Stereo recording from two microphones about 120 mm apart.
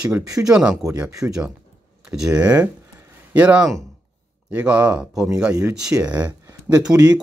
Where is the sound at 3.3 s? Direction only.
10° right (ahead or behind).